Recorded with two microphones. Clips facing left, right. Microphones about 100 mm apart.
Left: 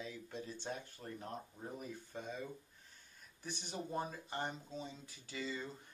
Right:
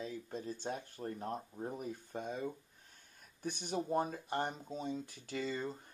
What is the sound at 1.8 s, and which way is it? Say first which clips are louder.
Speech: right 5 dB; 50° right (ahead or behind).